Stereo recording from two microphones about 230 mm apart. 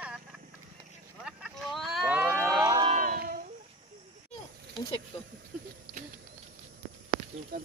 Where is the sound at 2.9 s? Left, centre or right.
Right.